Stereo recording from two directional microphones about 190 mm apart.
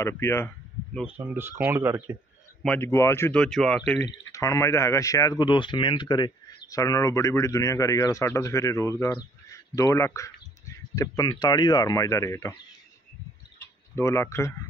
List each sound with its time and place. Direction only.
0.0 s speech: 15° left (ahead or behind)
1.0 s speech: 10° right (ahead or behind)
2.6 s speech: 10° left (ahead or behind)
4.0 s speech: 15° left (ahead or behind)
13.9 s speech: 15° left (ahead or behind)